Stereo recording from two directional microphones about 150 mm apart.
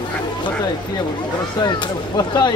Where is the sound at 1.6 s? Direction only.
30° left (ahead or behind).